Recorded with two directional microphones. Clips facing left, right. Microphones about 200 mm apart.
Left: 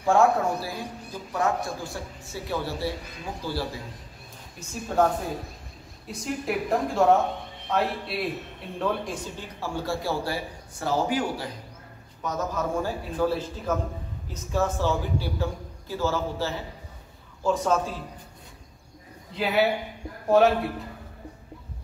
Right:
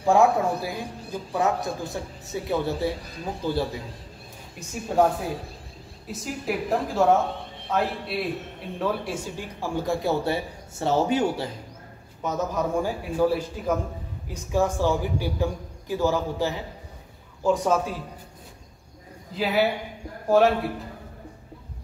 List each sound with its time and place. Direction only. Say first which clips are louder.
0.0 s a man's voice: right 1 dB; 15° right (ahead or behind)
4.6 s a man's voice: right 2 dB; 10° right (ahead or behind)
6.0 s a woman's voice: even; centre (ahead or behind)
19.3 s a woman's voice: even; centre (ahead or behind)